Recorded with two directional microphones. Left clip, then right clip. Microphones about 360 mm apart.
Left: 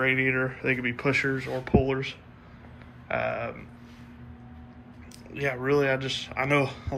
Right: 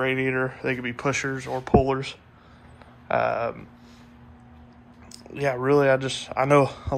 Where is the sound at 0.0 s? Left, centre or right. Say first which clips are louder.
Even; centre.